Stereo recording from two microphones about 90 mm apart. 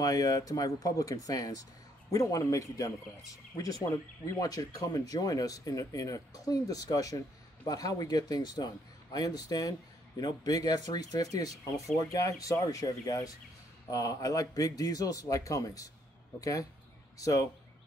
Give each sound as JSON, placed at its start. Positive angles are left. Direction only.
{"t": 0.0, "sound": "speech", "side_deg": 45}